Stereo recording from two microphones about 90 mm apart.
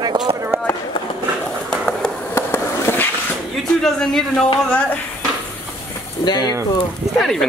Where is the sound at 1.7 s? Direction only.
5° left (ahead or behind).